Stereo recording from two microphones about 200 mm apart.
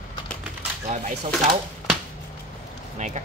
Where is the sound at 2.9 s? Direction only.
35° right (ahead or behind).